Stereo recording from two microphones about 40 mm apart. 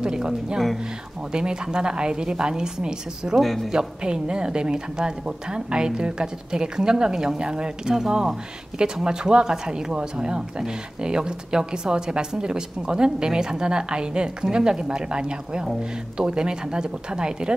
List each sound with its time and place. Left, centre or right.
0.0 s a woman's voice: centre
3.3 s speech: centre
3.7 s a woman's voice: right